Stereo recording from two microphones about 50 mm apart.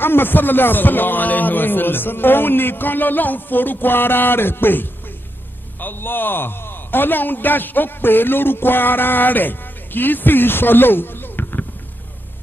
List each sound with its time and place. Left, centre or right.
0.0 s a man's voice: left